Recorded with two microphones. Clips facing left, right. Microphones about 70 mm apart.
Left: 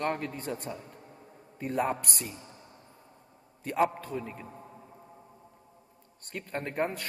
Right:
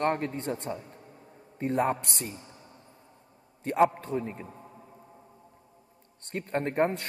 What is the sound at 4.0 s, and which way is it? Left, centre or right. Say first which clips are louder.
Speech: right 4 dB; right.